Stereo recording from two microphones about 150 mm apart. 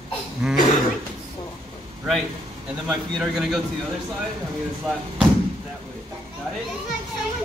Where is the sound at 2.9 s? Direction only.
Centre (ahead or behind).